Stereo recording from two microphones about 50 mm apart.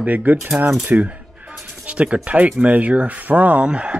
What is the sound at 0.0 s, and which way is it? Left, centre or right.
Coin, right.